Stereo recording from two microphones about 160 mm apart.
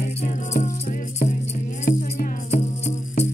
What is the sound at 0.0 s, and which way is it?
Music, 45° left (ahead or behind).